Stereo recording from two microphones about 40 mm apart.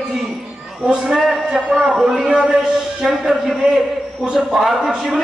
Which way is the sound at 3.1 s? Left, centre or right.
Centre.